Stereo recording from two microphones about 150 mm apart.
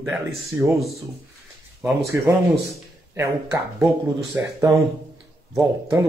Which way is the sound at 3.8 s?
Centre (ahead or behind).